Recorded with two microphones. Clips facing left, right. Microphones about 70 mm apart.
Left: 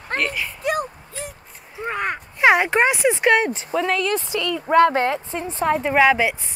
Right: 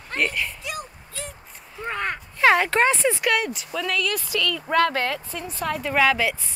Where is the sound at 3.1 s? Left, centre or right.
Left.